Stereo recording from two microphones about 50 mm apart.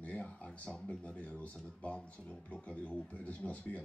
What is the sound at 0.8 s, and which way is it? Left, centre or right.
Speech, left.